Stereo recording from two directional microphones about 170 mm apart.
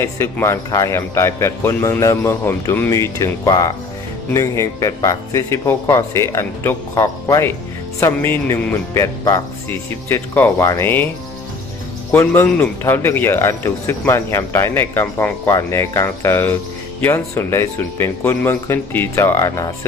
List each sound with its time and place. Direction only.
0.0 s speech: 15° left (ahead or behind)
12.1 s speech: 10° left (ahead or behind)